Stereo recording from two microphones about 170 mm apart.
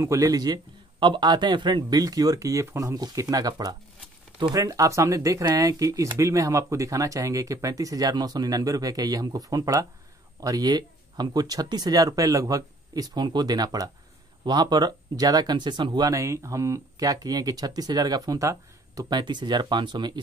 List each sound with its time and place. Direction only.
0.0 s speech: 20° right (ahead or behind)